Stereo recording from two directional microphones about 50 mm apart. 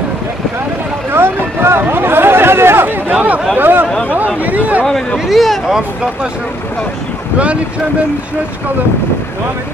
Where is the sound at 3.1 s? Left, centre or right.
Right.